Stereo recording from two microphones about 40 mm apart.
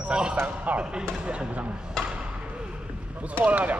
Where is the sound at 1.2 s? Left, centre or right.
Right.